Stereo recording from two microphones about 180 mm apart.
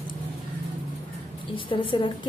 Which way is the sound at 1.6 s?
30° left (ahead or behind).